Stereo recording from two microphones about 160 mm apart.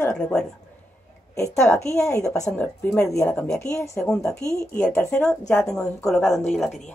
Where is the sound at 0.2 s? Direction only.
5° left (ahead or behind).